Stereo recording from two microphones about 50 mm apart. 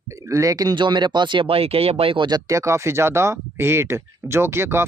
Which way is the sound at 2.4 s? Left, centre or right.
Right.